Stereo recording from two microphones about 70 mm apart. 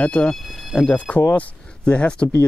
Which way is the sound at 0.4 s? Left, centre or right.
Centre.